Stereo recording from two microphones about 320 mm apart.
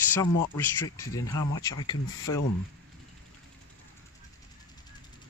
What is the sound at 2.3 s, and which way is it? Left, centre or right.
Speech, left.